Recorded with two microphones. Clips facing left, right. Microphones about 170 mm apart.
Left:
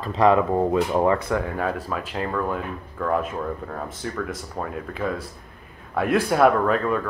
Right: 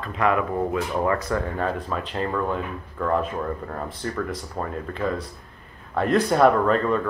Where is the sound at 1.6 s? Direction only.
5° left (ahead or behind).